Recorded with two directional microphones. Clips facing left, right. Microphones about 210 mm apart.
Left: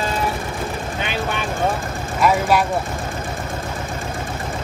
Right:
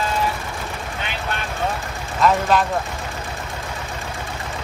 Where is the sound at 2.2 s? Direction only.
10° left (ahead or behind).